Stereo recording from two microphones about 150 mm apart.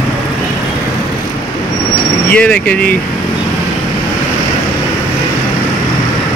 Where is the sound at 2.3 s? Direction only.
10° left (ahead or behind).